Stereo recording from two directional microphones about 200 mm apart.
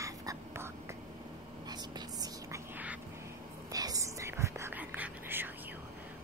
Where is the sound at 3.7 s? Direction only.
20° right (ahead or behind).